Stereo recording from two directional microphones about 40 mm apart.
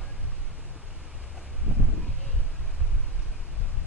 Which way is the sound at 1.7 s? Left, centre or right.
Right.